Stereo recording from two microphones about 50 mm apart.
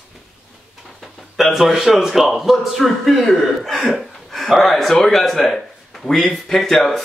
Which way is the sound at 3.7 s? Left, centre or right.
Centre.